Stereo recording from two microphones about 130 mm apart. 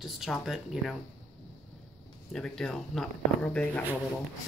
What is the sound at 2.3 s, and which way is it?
Speech, 5° left (ahead or behind).